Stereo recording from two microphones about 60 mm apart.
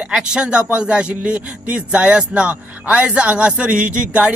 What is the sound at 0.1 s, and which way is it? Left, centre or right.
Speech, centre.